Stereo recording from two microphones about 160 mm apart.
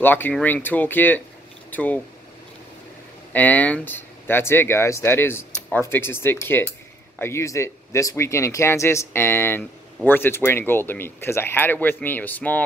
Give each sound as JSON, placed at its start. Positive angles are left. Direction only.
{"t": 0.0, "sound": "speech", "side_deg": 10}
{"t": 3.3, "sound": "speech", "side_deg": 10}